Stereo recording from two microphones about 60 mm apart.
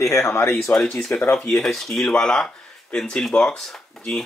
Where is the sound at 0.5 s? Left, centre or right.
Centre.